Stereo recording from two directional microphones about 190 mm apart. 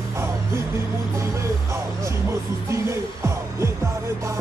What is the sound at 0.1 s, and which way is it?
Music, 15° right (ahead or behind).